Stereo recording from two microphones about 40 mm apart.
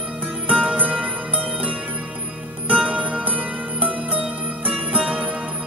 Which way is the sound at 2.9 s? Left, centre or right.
Right.